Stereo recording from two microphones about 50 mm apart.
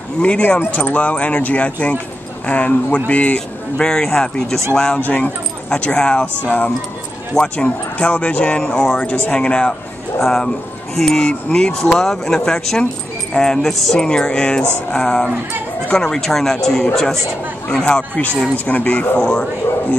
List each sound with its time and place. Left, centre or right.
0.2 s speech: left
0.6 s speech: left; by 5.0 s centre
5.0 s speech: left
5.7 s speech: centre
10.2 s speech: centre
18.7 s speech: left
19.1 s speech: centre